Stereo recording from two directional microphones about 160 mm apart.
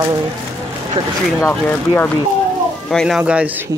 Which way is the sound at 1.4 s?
10° left (ahead or behind).